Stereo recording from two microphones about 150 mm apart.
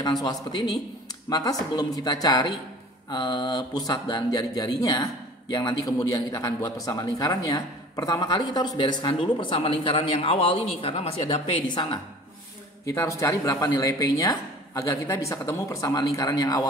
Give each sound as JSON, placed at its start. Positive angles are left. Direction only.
{"t": 0.0, "sound": "speech", "side_deg": 25}
{"t": 12.8, "sound": "speech", "side_deg": 20}